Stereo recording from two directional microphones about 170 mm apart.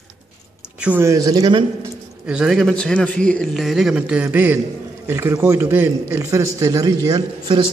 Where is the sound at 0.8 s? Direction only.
10° right (ahead or behind).